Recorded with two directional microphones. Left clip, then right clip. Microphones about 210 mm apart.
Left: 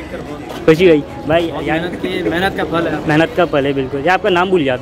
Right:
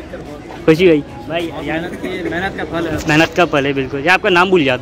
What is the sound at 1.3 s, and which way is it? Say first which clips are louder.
Speech: left 5 dB; 35° left (ahead or behind).